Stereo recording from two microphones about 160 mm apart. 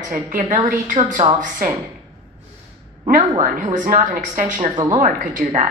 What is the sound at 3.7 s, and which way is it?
Speech, 55° right (ahead or behind).